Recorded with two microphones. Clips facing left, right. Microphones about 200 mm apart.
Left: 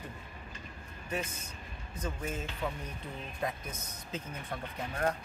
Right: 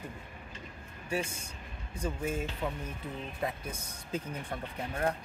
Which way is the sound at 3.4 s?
10° right (ahead or behind).